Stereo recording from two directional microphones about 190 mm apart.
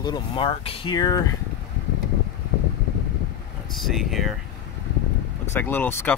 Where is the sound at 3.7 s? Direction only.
Centre (ahead or behind).